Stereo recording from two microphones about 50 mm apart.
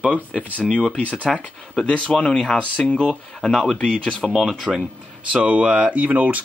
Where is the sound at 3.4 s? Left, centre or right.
Centre.